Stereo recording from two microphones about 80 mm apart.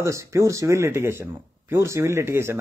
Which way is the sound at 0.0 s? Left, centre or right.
Right.